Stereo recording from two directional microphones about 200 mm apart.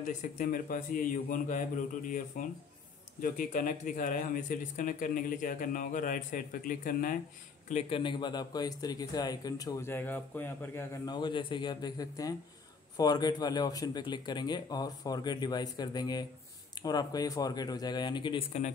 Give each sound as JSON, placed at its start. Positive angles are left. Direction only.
{"t": 0.0, "sound": "speech", "side_deg": 40}
{"t": 7.6, "sound": "a man's voice", "side_deg": 30}